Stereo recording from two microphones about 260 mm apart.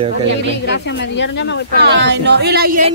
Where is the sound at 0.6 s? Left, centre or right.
Left.